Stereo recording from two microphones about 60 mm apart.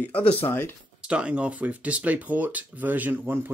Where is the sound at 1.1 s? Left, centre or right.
Centre.